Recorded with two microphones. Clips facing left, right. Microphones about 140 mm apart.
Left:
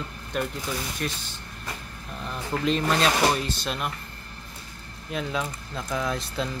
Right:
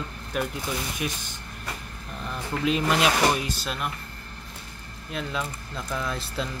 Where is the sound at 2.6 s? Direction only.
10° right (ahead or behind).